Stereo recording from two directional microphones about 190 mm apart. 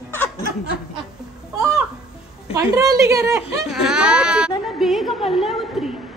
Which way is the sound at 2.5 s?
15° right (ahead or behind).